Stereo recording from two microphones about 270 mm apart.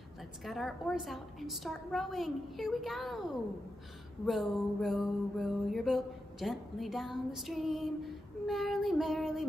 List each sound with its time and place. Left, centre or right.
0.5 s mantra: centre